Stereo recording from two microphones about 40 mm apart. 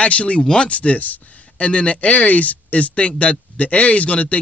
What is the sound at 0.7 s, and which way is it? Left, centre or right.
Speech, left.